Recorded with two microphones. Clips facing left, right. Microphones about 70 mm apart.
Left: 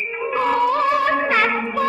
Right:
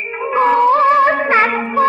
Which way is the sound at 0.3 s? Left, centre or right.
Right.